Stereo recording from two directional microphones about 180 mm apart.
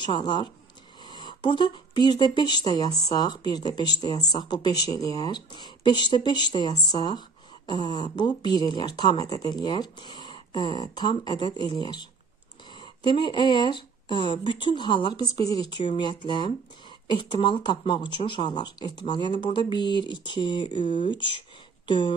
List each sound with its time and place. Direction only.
0.0 s speech: 25° left (ahead or behind)